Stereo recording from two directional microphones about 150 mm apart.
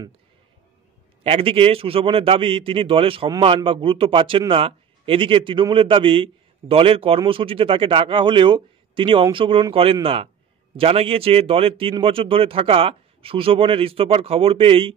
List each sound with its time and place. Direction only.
1.2 s a man's voice: 40° right (ahead or behind)